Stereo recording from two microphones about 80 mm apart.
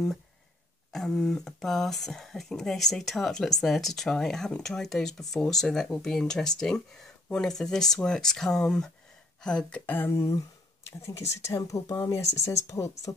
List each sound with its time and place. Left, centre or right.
0.9 s speech: centre; by 10.1 s left
10.1 s speech: left